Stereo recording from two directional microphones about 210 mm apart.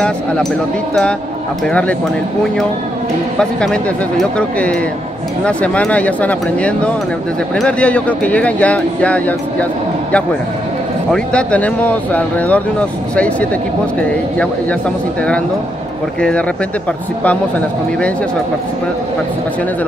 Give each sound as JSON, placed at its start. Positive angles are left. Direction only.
{"t": 1.7, "sound": "speech", "side_deg": 5}
{"t": 3.3, "sound": "speech", "side_deg": 0}
{"t": 11.1, "sound": "speech", "side_deg": 5}
{"t": 16.2, "sound": "speech", "side_deg": 5}